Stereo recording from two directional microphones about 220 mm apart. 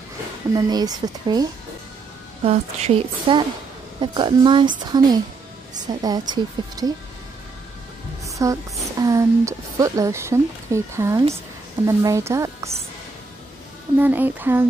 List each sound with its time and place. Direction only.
0.6 s speech: 15° right (ahead or behind)
2.4 s speech: 30° right (ahead or behind)
8.3 s music: 15° right (ahead or behind)
9.0 s speech: 15° right (ahead or behind)
13.9 s speech: 10° right (ahead or behind)